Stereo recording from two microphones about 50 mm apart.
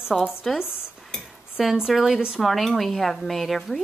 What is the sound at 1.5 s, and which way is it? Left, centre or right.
A woman's voice, centre.